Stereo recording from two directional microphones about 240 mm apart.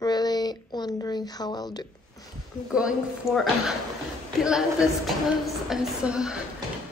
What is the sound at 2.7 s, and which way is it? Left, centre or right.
A woman's voice, centre.